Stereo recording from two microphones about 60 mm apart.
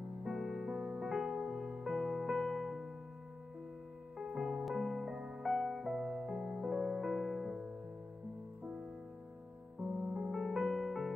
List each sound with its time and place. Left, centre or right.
0.2 s music: centre
4.3 s music: centre
10.1 s music: centre